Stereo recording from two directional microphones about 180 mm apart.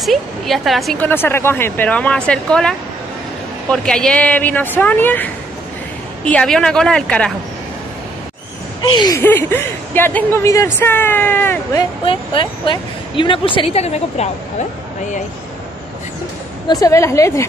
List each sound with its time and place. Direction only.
0.0 s speech: centre (ahead or behind)
3.7 s a woman's voice: 5° left (ahead or behind)
8.8 s speech: 25° left (ahead or behind)
9.2 s speech: 10° left (ahead or behind)
12.0 s speech: 30° left (ahead or behind)
16.6 s speech: 20° left (ahead or behind)